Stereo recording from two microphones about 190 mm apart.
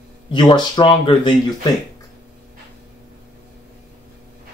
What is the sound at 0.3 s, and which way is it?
Speech, 25° left (ahead or behind).